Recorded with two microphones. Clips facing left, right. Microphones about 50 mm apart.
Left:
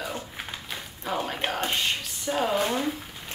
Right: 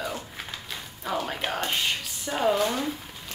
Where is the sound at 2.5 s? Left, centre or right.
Centre.